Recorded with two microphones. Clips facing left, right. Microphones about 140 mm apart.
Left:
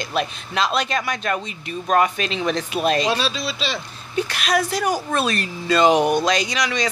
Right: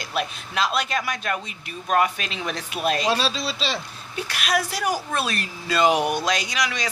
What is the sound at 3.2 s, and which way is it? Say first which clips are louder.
Speech: left 1 dB; 35° right (ahead or behind).